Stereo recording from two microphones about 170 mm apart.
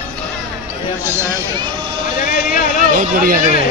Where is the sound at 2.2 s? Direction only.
55° left (ahead or behind).